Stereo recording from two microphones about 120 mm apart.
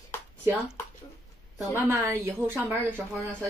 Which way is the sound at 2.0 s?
20° right (ahead or behind).